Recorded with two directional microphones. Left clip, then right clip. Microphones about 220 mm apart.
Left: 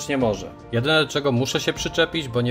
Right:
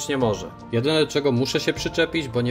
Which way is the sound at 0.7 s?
10° left (ahead or behind).